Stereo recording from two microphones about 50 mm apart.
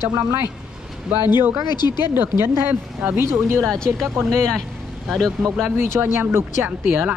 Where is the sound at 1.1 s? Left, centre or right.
Right.